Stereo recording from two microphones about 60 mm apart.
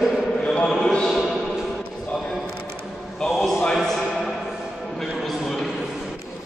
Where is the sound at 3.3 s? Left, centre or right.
Centre.